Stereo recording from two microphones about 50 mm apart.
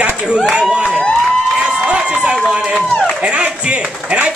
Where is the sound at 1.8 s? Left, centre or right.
Right.